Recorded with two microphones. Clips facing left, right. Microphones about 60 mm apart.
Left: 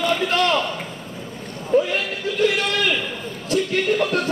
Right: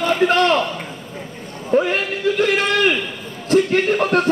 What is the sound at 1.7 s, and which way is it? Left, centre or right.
A man's voice, right.